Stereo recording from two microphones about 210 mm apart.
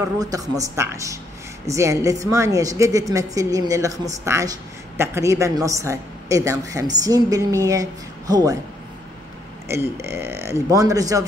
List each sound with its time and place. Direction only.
0.0 s a woman's voice: 15° right (ahead or behind)
9.7 s a woman's voice: 10° right (ahead or behind)